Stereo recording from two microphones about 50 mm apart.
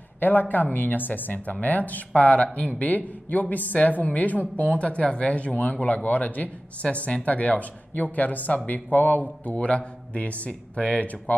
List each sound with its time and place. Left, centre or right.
0.2 s a woman's voice: left
9.5 s a man's voice: left